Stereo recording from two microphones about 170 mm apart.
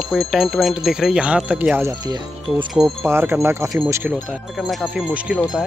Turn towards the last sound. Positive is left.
turn(degrees=-5)  # may be behind; listen again after turning